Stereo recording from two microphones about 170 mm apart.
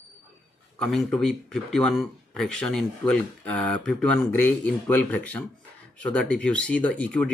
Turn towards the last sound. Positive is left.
turn(degrees=5)  # may be behind; listen again after turning